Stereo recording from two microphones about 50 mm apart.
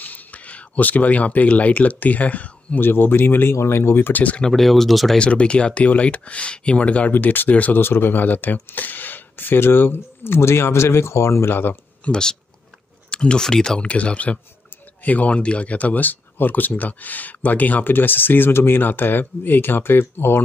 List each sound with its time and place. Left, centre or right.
0.0 s speech: left
2.8 s speech: left
4.1 s speech: left
4.6 s speech: centre
5.1 s speech: left
7.1 s speech: left
7.8 s speech: left
11.5 s speech: left
12.0 s speech: centre
13.1 s a sound: left
13.4 s speech: centre
13.8 s speech: left